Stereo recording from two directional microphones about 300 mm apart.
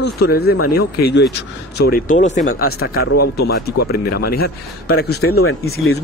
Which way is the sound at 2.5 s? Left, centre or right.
Left.